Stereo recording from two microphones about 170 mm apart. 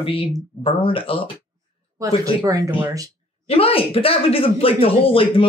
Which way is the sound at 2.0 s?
20° right (ahead or behind).